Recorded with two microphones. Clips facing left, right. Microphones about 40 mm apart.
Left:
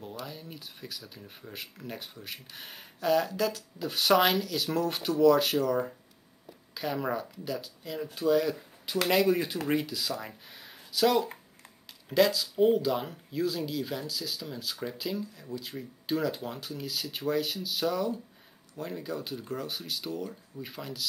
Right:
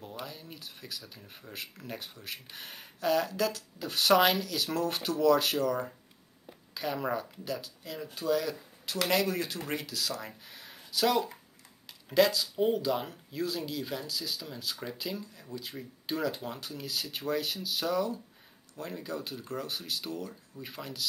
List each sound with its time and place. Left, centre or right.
0.3 s speech: centre